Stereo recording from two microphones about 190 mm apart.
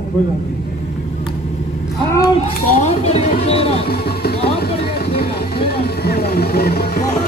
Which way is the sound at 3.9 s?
55° left (ahead or behind).